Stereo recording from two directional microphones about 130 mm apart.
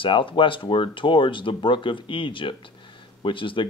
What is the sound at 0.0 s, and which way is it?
Speech, 40° left (ahead or behind).